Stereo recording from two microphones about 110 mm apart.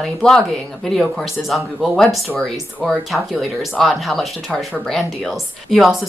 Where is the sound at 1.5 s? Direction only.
Centre (ahead or behind).